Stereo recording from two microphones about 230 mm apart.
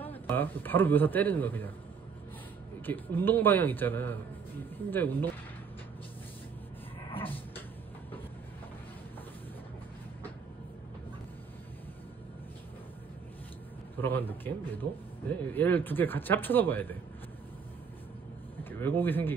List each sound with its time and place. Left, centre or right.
0.0 s a man's voice: centre
2.8 s a man's voice: centre
7.2 s a sound: centre
13.9 s a man's voice: centre
18.6 s speech: centre